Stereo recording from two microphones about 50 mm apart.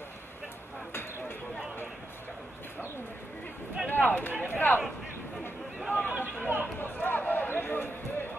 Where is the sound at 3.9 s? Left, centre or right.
Left.